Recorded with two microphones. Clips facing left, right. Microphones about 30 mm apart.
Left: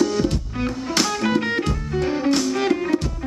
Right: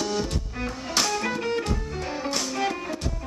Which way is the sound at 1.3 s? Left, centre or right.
Left.